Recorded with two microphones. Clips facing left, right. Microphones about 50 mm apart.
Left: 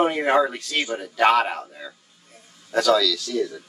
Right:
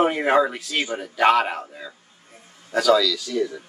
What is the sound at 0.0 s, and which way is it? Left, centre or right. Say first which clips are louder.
A man's voice: right 1 dB; centre.